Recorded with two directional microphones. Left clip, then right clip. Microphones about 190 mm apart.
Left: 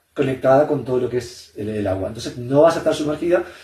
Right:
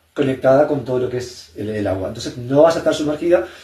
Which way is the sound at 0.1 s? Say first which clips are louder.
Right 1 dB; 15° right (ahead or behind).